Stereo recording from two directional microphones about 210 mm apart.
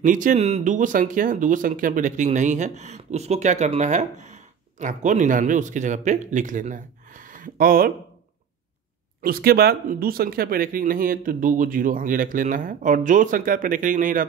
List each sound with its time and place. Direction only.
0.0 s speech: 40° right (ahead or behind)
9.2 s speech: 45° right (ahead or behind)